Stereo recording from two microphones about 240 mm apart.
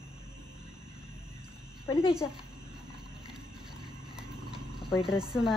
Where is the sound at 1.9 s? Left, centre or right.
Centre.